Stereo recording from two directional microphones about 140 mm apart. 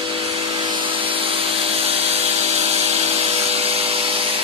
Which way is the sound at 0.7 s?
35° right (ahead or behind).